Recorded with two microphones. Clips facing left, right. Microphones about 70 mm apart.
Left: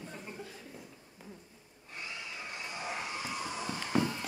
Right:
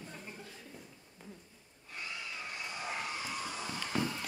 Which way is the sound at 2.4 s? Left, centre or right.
Centre.